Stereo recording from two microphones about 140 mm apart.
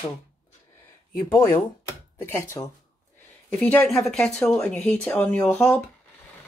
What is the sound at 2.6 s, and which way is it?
Speech, 20° left (ahead or behind).